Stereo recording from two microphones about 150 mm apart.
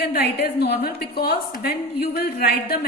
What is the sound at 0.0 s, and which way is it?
A woman's voice, 90° left.